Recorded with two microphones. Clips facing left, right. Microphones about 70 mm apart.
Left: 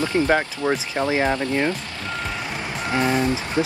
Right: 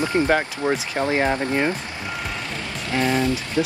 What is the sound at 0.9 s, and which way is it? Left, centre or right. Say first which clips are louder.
Speech: even; left.